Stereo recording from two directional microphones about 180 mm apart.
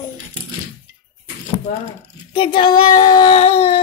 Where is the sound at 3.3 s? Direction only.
35° left (ahead or behind).